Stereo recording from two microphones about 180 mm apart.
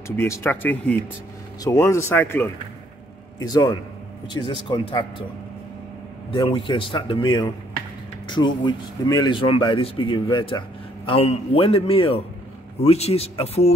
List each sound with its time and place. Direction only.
0.1 s speech: 15° left (ahead or behind)
6.3 s a man's voice: 30° left (ahead or behind)